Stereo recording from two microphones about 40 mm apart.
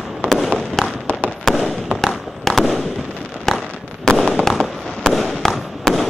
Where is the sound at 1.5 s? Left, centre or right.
Centre.